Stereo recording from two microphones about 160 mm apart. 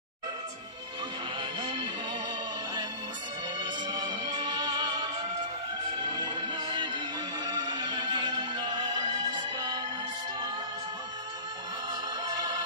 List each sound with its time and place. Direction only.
1.6 s music: 30° right (ahead or behind)
3.9 s music: 25° right (ahead or behind)